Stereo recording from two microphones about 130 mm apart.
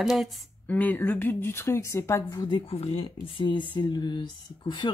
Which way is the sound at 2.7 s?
50° left (ahead or behind).